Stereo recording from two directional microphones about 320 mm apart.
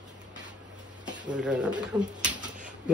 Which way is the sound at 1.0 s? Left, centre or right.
Centre.